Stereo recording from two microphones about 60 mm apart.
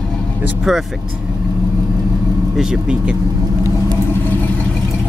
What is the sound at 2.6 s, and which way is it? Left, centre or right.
Speech, centre.